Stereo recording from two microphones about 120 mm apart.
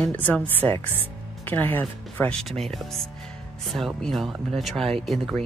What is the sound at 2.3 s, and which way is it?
Speech, 5° left (ahead or behind).